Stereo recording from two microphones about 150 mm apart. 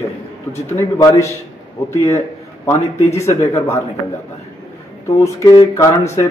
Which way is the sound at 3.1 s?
15° left (ahead or behind).